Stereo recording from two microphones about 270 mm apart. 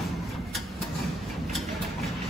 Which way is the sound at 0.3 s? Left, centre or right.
Centre.